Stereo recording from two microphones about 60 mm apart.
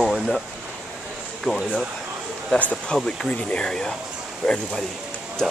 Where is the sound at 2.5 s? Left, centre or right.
Left.